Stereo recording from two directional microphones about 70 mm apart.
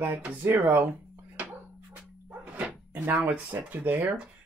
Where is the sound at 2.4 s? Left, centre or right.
Centre.